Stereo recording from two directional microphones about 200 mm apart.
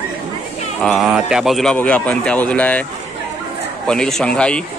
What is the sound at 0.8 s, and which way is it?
Speech, centre (ahead or behind).